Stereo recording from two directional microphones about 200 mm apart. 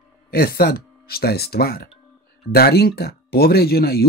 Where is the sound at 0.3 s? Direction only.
50° left (ahead or behind).